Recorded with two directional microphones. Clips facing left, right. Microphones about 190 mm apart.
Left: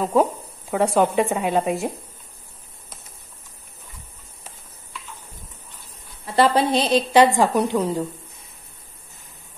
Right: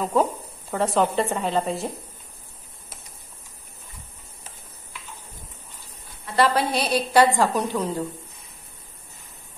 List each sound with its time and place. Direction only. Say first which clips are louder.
0.0 s a sound: left 3 dB; 10° left (ahead or behind)
0.9 s a woman's voice: left 2 dB; 10° left (ahead or behind)
6.2 s a woman's voice: left 3 dB; 25° left (ahead or behind)